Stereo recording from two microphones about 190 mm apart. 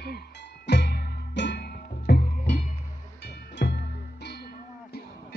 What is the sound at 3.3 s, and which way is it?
Music, 60° left (ahead or behind).